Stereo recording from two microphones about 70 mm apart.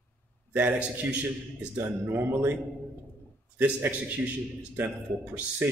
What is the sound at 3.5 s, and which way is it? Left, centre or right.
A man's voice, right.